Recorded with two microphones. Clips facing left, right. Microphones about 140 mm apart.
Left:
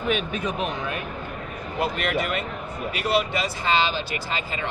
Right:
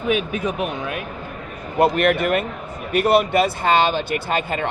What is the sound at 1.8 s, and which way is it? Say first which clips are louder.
Speech: right 9 dB; 55° right (ahead or behind).